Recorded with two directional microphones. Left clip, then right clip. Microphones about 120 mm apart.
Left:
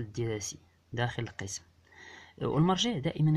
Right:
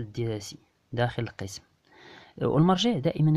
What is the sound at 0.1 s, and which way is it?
Speech, 40° right (ahead or behind).